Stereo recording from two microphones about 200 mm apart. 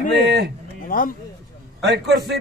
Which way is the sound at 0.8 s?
45° left (ahead or behind).